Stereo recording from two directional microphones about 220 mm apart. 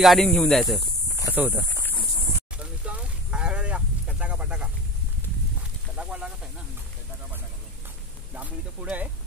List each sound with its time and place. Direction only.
0.0 s speech: centre (ahead or behind)
2.6 s sheep: 5° right (ahead or behind)
5.9 s snake: 5° right (ahead or behind)
8.4 s a sound: 5° right (ahead or behind)